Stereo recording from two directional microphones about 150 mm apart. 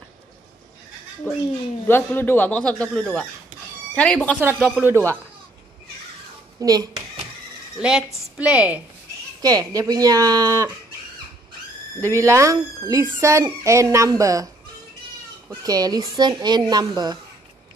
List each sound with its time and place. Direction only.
1.3 s speech: 15° left (ahead or behind)
4.8 s speech: 20° right (ahead or behind)
6.6 s speech: 25° right (ahead or behind)
7.8 s a woman's voice: 5° right (ahead or behind)
9.4 s speech: 25° right (ahead or behind)
12.0 s speech: 20° right (ahead or behind)
15.6 s speech: 25° right (ahead or behind)